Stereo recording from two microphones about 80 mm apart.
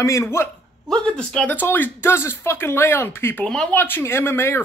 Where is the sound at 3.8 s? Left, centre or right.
Left.